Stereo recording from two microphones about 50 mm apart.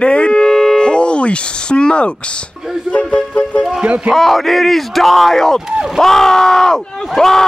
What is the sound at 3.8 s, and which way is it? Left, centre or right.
Speech, right.